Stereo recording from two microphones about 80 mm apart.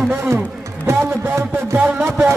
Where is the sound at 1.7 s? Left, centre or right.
Centre.